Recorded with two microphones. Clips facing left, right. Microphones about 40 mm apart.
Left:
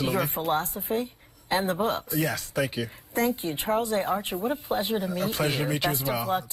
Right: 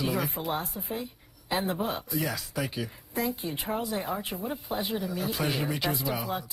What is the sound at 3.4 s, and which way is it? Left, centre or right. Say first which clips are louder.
Speech: left 5 dB; left.